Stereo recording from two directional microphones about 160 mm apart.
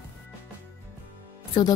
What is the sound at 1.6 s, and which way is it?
Speech, 25° left (ahead or behind).